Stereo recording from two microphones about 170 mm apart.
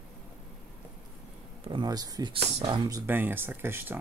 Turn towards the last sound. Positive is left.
turn(degrees=-10)  # may be behind; listen again after turning